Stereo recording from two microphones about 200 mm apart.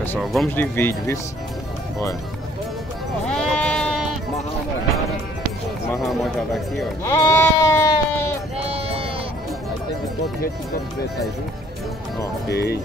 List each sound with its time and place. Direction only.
0.2 s speech: centre (ahead or behind)
0.5 s speech: 10° left (ahead or behind)
3.3 s sheep: 5° left (ahead or behind)
7.1 s sheep: 15° left (ahead or behind)
8.5 s sheep: 30° right (ahead or behind)
12.4 s speech: 55° left (ahead or behind)